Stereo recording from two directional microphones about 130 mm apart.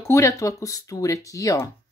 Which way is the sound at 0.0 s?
25° left (ahead or behind).